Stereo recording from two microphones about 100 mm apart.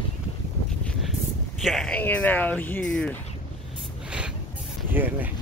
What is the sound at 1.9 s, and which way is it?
Speech, 15° left (ahead or behind).